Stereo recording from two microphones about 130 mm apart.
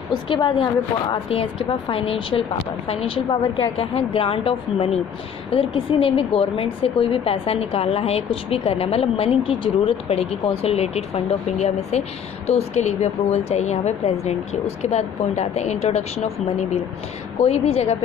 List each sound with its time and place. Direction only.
0.1 s a woman's voice: 35° left (ahead or behind)
3.3 s a woman's voice: 45° left (ahead or behind)